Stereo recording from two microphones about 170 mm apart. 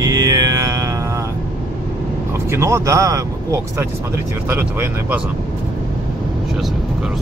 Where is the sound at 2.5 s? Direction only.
15° right (ahead or behind).